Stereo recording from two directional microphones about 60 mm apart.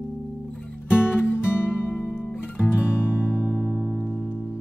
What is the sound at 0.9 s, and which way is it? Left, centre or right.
Music, left.